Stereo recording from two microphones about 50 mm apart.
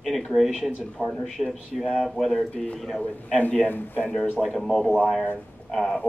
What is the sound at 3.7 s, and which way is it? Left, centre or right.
Speech, left.